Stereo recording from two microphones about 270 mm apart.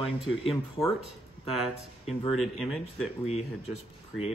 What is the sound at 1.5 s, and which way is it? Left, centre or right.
Speech, centre.